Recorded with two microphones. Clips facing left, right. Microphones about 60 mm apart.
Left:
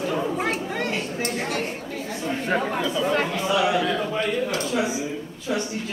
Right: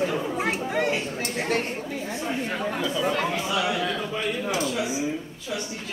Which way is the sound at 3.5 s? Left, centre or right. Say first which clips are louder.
Left 4 dB; centre.